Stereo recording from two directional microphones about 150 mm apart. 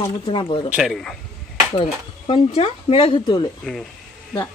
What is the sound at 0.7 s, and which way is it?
Speech, centre (ahead or behind).